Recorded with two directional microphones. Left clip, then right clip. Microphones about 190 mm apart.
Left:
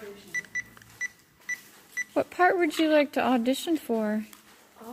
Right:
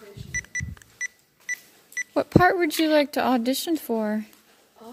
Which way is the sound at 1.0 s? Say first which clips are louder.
Right 3 dB; 45° right (ahead or behind).